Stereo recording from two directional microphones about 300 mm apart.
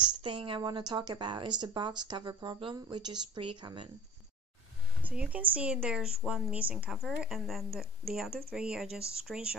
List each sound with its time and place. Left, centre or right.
0.0 s a woman's voice: centre
5.0 s a woman's voice: centre